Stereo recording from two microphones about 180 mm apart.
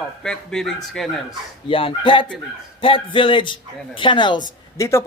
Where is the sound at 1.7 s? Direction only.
30° left (ahead or behind).